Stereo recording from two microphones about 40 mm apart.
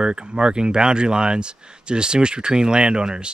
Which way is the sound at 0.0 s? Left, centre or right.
Right.